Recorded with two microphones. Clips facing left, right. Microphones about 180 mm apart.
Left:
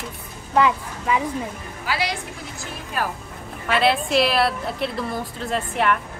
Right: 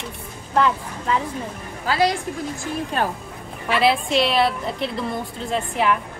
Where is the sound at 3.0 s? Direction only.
25° right (ahead or behind).